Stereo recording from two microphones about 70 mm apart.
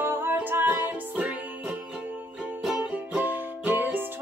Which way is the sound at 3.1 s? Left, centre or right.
Right.